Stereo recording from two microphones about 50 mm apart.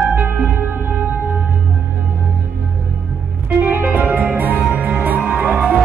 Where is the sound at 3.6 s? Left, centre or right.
Right.